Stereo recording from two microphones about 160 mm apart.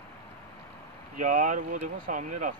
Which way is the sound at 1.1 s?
50° right (ahead or behind).